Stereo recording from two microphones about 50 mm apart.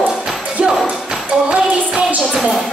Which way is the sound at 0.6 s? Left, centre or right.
Centre.